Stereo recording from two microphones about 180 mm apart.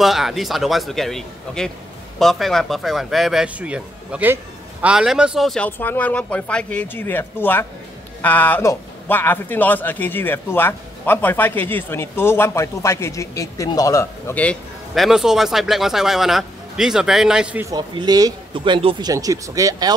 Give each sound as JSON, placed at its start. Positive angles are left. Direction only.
{"t": 0.0, "sound": "a man's voice", "side_deg": 0}
{"t": 17.6, "sound": "speech", "side_deg": -25}